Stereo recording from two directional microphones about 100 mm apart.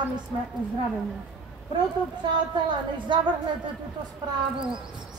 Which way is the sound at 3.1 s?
55° right (ahead or behind).